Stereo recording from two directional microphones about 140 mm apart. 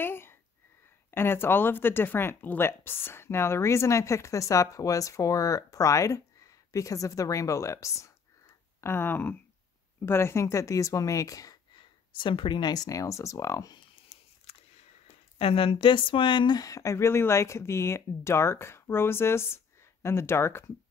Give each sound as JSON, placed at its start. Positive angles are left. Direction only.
{"t": 0.0, "sound": "speech", "side_deg": 15}
{"t": 14.0, "sound": "a sound", "side_deg": 45}
{"t": 15.0, "sound": "speech", "side_deg": 45}